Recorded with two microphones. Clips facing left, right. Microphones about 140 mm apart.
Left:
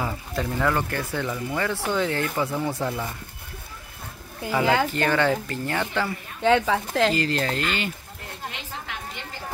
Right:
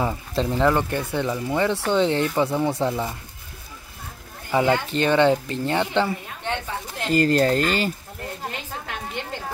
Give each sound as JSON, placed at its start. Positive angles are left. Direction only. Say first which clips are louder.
{"t": 0.0, "sound": "speech", "louder": "right 4 dB", "side_deg": -25}
{"t": 4.5, "sound": "speech", "louder": "right 1 dB", "side_deg": -20}
{"t": 6.4, "sound": "a woman's voice", "louder": "left 11 dB", "side_deg": 90}
{"t": 7.2, "sound": "a woman's voice", "louder": "right 7 dB", "side_deg": -45}